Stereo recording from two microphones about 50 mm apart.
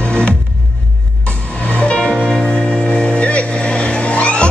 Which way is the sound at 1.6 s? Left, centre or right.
Left.